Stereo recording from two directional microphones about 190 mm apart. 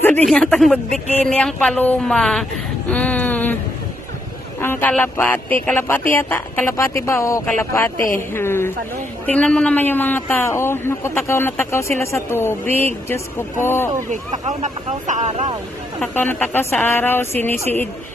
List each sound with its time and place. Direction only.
0.0 s speech: 10° left (ahead or behind)
2.9 s a sound: 5° left (ahead or behind)
4.6 s a man's voice: 10° left (ahead or behind)
14.1 s speech: 40° right (ahead or behind)
16.0 s a man's voice: 10° left (ahead or behind)